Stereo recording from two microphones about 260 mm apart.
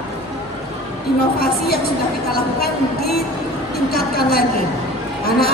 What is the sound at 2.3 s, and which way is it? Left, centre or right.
A woman's voice, left.